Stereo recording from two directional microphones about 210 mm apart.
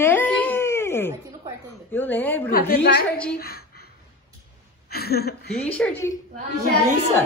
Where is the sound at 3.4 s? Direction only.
50° left (ahead or behind).